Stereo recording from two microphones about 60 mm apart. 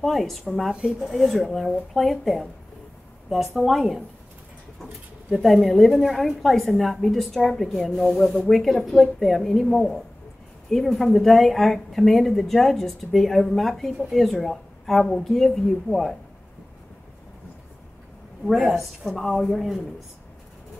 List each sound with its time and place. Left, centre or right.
0.0 s speech: centre
5.3 s speech: centre
18.4 s speech: centre